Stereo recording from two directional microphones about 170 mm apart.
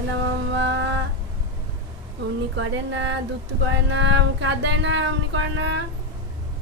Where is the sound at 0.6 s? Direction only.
90° right.